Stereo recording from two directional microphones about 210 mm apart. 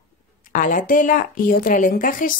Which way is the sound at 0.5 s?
40° left (ahead or behind).